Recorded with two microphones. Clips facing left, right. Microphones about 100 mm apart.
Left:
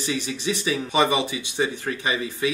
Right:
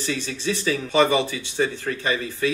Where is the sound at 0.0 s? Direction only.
15° left (ahead or behind).